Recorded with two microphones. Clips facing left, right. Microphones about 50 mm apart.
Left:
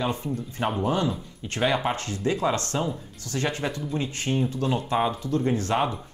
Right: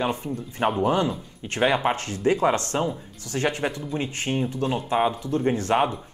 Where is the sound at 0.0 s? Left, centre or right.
Right.